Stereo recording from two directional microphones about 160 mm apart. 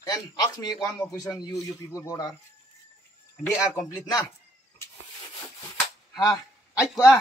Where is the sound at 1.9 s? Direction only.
25° left (ahead or behind).